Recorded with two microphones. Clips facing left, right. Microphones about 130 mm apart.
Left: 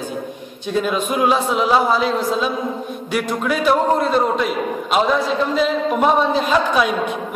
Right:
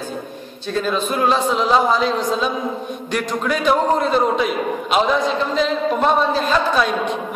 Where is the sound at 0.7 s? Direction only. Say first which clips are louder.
Left 1 dB; 10° left (ahead or behind).